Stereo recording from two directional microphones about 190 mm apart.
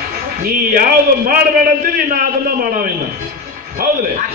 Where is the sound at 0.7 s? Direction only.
50° right (ahead or behind).